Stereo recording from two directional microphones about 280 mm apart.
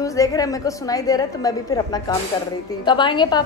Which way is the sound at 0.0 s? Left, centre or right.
Centre.